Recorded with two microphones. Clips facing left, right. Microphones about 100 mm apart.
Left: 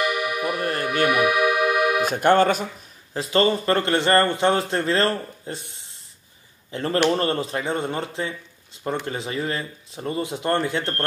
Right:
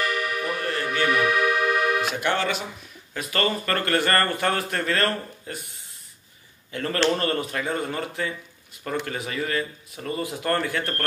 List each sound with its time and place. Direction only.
0.0 s music: 15° left (ahead or behind)
1.0 s accordion: 15° left (ahead or behind)
2.0 s speech: 50° left (ahead or behind)
3.1 s a man's voice: 25° left (ahead or behind)